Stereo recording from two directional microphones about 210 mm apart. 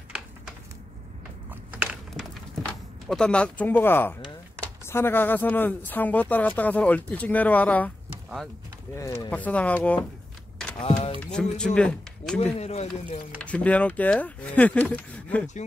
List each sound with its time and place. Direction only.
1.5 s a sound: 5° right (ahead or behind)
2.6 s speech: 5° left (ahead or behind)
10.8 s a sound: 25° left (ahead or behind)
11.1 s speech: 5° left (ahead or behind)
12.5 s speech: 30° left (ahead or behind)
13.4 s speech: 5° left (ahead or behind)